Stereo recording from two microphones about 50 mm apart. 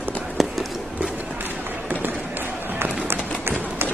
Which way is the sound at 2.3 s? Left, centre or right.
Right.